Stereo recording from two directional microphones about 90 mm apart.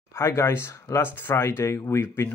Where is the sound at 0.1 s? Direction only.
30° left (ahead or behind).